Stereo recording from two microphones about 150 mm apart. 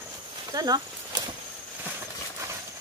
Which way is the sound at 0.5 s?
25° right (ahead or behind).